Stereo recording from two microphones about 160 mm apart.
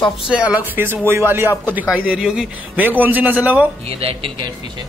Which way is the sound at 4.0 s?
35° right (ahead or behind).